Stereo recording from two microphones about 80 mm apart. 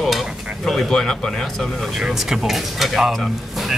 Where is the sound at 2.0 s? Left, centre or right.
Centre.